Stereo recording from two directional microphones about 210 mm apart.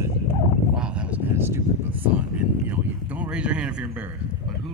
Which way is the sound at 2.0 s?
5° right (ahead or behind).